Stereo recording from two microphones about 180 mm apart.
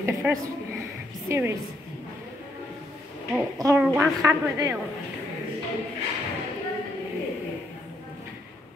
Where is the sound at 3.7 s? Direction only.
5° right (ahead or behind).